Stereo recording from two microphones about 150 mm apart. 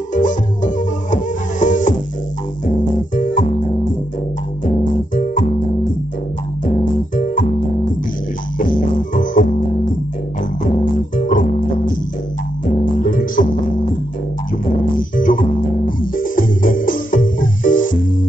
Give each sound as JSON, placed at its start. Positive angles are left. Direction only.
{"t": 0.1, "sound": "music", "side_deg": 55}
{"t": 5.1, "sound": "music", "side_deg": 60}
{"t": 6.6, "sound": "music", "side_deg": 60}
{"t": 9.1, "sound": "music", "side_deg": 60}
{"t": 11.1, "sound": "music", "side_deg": 60}
{"t": 15.1, "sound": "music", "side_deg": 65}